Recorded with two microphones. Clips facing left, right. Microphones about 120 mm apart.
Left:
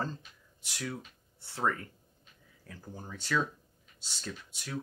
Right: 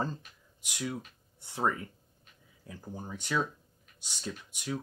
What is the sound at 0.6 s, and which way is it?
Speech, 15° right (ahead or behind).